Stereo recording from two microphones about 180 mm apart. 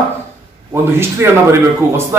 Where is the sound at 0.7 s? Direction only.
15° right (ahead or behind).